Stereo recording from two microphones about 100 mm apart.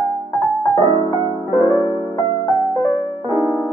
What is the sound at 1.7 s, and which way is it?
Music, 40° right (ahead or behind).